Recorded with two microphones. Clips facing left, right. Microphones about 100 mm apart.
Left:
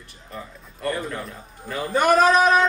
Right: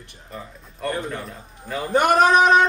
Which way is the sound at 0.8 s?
20° right (ahead or behind).